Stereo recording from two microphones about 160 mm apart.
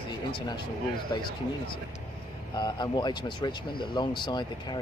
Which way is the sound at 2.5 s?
25° left (ahead or behind).